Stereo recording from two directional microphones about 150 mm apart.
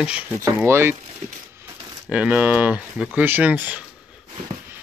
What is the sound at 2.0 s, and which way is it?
Speech, 10° right (ahead or behind).